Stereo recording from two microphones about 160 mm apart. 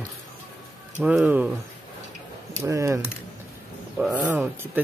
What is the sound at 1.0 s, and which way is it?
Speech, 10° right (ahead or behind).